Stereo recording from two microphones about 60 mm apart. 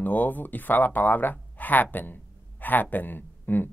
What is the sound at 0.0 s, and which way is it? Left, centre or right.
Speech, left.